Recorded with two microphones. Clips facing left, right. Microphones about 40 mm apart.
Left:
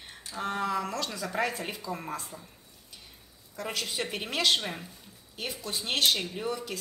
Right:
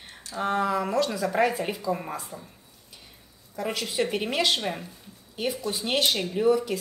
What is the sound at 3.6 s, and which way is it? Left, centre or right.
Speech, centre.